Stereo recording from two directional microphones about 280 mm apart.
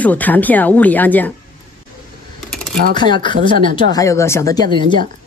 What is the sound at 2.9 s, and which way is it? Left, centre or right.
Speech, centre.